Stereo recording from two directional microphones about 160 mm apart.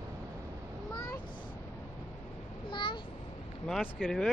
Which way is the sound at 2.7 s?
30° left (ahead or behind).